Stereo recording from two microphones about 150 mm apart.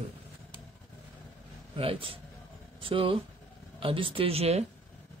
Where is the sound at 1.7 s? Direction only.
40° right (ahead or behind).